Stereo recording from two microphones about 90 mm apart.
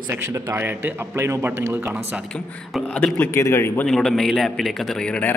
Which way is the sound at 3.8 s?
5° left (ahead or behind).